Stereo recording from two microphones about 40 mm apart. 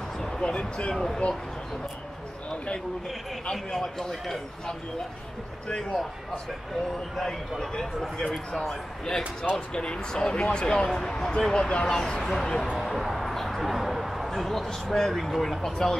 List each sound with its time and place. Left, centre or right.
0.4 s speech: left
0.9 s a man's voice: centre
2.5 s speech: left
3.5 s a man's voice: centre
5.8 s a man's voice: centre
7.2 s a man's voice: centre
12.7 s a sound: centre
14.9 s a man's voice: centre